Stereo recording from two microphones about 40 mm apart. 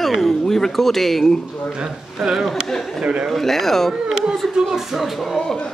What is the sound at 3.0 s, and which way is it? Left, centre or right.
Speech, right.